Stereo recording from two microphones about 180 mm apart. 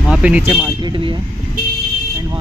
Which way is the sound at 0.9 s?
25° right (ahead or behind).